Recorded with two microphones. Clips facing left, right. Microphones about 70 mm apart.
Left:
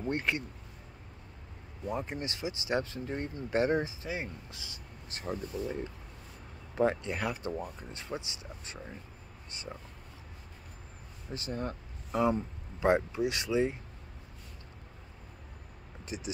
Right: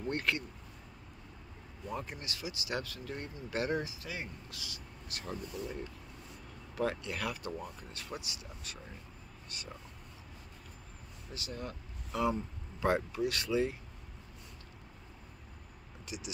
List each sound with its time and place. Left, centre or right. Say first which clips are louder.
0.0 s speech: left 2 dB; left
1.9 s speech: left 5 dB; left
6.7 s speech: left 6 dB; left
11.3 s speech: left 6 dB; left
16.1 s speech: left 4 dB; left